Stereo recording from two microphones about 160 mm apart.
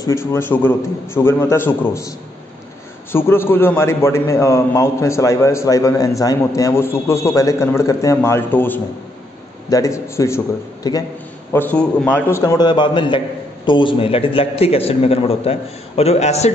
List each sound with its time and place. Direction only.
0.0 s a man's voice: 15° left (ahead or behind)
11.5 s a man's voice: 10° left (ahead or behind)
12.3 s a man's voice: 20° left (ahead or behind); by 16.5 s 45° left (ahead or behind)